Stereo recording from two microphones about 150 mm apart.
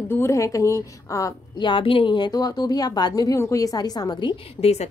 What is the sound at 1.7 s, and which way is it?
A woman's voice, 35° left (ahead or behind).